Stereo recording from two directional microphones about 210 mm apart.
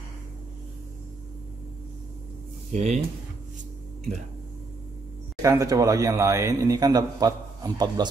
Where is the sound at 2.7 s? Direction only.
30° right (ahead or behind).